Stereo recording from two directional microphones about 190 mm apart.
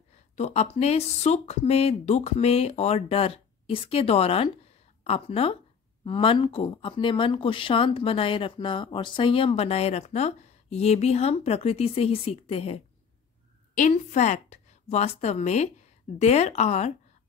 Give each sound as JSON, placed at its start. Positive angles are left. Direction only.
{"t": 0.4, "sound": "speech", "side_deg": 35}